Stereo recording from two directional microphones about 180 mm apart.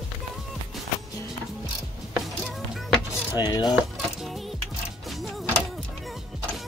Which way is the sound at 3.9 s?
Centre (ahead or behind).